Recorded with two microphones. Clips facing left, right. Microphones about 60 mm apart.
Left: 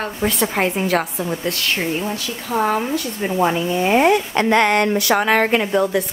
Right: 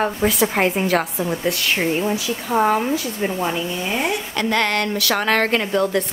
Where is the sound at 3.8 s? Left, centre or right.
Left.